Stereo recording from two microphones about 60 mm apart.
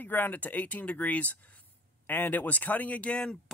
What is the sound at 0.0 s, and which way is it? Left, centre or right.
Speech, left.